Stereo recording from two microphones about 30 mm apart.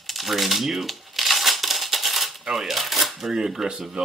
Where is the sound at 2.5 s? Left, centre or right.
Centre.